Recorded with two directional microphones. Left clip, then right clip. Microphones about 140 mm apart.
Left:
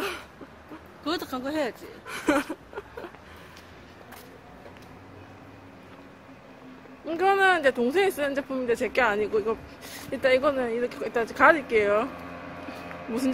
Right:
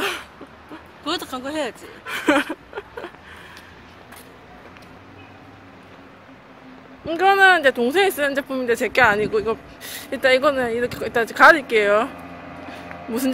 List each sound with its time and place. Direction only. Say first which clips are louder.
1.0 s speech: right 4 dB; 40° left (ahead or behind)
2.0 s a sound: right 7 dB; 10° right (ahead or behind)
7.1 s speech: right 7 dB; 5° right (ahead or behind)